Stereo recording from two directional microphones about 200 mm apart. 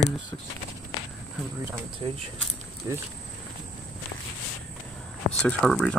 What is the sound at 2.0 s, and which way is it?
Speech, 25° right (ahead or behind).